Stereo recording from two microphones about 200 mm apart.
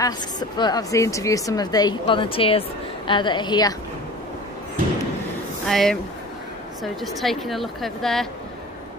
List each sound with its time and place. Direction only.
0.0 s a woman's voice: 20° left (ahead or behind)
5.7 s a woman's voice: centre (ahead or behind)